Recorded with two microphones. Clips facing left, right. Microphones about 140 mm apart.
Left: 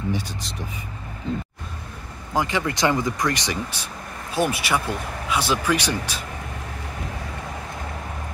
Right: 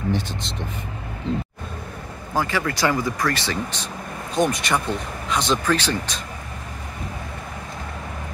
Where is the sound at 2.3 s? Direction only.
20° left (ahead or behind).